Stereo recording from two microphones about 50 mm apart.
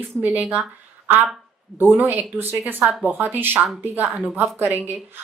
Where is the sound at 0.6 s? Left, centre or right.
Right.